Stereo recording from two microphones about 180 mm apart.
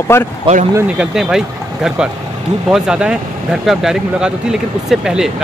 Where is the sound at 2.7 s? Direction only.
5° right (ahead or behind).